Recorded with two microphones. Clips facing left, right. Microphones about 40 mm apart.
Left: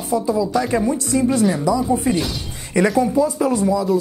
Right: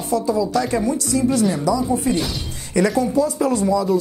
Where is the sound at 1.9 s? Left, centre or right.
Centre.